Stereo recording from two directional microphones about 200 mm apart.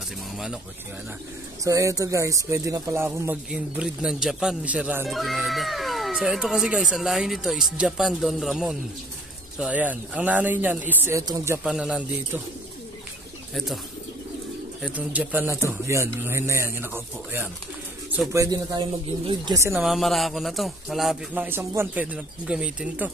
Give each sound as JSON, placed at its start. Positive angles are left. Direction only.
{"t": 1.6, "sound": "speech", "side_deg": -15}
{"t": 14.8, "sound": "speech", "side_deg": -5}
{"t": 19.7, "sound": "speech", "side_deg": 0}